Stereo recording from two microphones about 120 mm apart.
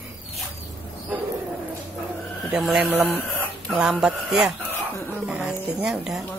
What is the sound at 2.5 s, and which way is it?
Speech, 5° right (ahead or behind).